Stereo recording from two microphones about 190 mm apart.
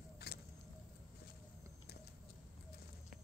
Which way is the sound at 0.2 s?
55° left (ahead or behind).